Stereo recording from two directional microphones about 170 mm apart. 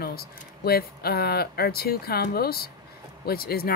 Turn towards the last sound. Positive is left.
turn(degrees=65)  # may be behind; listen again after turning